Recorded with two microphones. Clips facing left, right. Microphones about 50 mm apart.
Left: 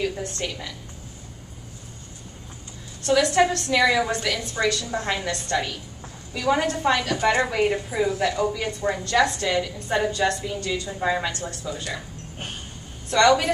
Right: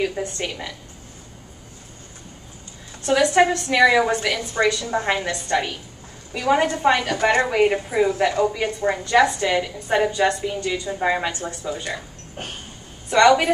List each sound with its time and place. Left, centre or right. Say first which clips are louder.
0.0 s a woman's voice: right 3 dB; centre
3.1 s a woman's voice: right 2 dB; right
13.1 s a woman's voice: right 3 dB; centre